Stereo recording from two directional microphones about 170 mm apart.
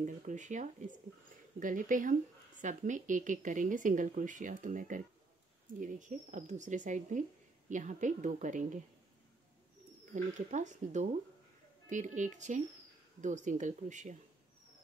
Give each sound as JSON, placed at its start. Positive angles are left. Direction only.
{"t": 0.0, "sound": "speech", "side_deg": -45}
{"t": 10.1, "sound": "speech", "side_deg": -45}